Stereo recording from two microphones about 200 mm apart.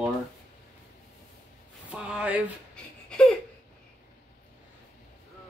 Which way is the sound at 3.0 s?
5° left (ahead or behind).